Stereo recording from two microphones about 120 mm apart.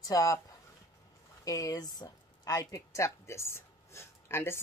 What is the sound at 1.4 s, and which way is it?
Speech, 30° left (ahead or behind).